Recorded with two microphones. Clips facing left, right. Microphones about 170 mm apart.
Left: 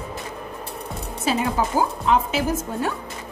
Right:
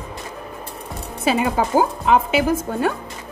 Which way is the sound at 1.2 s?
70° right (ahead or behind).